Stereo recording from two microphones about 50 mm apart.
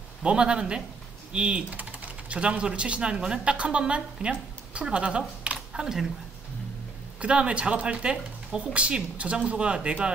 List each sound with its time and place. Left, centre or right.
0.2 s speech: centre
1.8 s speech: right
5.7 s speech: centre
7.2 s speech: right